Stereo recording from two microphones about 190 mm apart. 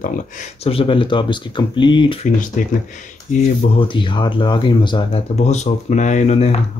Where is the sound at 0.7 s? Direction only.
30° left (ahead or behind).